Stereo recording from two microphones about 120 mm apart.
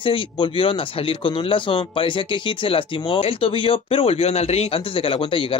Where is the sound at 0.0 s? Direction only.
45° left (ahead or behind).